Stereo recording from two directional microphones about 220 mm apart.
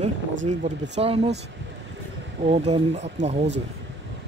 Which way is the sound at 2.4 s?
30° right (ahead or behind).